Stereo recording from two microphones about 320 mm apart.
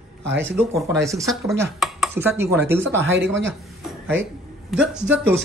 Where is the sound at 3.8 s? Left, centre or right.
Centre.